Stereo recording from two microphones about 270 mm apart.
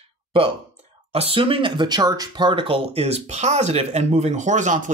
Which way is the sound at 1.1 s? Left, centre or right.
Right.